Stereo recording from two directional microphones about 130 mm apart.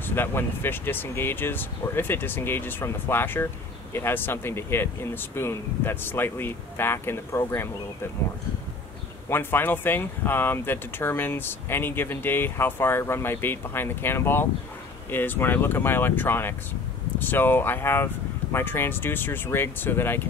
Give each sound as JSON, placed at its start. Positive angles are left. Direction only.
{"t": 0.0, "sound": "speech", "side_deg": 15}
{"t": 9.3, "sound": "speech", "side_deg": 15}